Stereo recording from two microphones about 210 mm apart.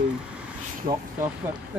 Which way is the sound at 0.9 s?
35° right (ahead or behind).